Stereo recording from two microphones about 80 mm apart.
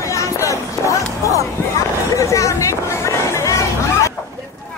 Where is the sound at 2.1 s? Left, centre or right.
Left.